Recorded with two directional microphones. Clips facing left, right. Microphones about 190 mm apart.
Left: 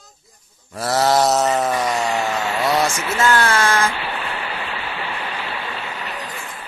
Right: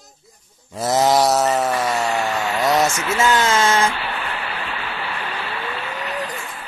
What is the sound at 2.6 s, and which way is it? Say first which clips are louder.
Speech: right 2 dB; 20° right (ahead or behind).